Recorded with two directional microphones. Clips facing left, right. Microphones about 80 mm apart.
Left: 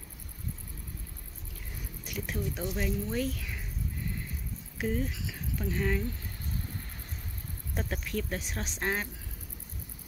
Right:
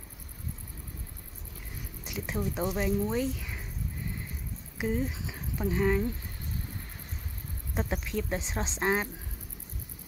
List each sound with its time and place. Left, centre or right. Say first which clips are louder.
2.0 s speech: right 2 dB; centre
4.7 s speech: right 1 dB; centre
5.1 s speech: even; right
5.6 s speech: right 5 dB; centre
7.7 s speech: right 2 dB; centre